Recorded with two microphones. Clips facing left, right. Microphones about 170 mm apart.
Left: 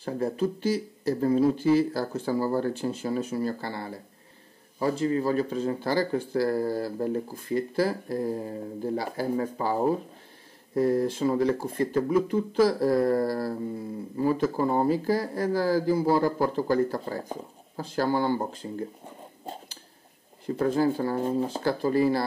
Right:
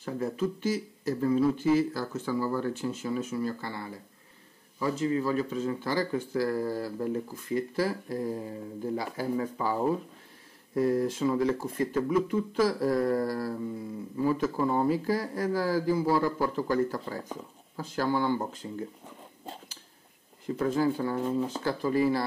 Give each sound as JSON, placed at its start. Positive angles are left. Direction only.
{"t": 0.0, "sound": "speech", "side_deg": 35}
{"t": 19.4, "sound": "a sound", "side_deg": 40}
{"t": 20.4, "sound": "speech", "side_deg": 35}